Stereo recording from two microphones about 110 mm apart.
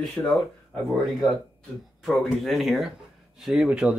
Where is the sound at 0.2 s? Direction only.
15° left (ahead or behind).